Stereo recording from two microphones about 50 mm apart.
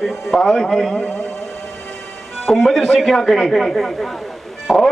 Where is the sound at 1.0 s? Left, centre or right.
Left.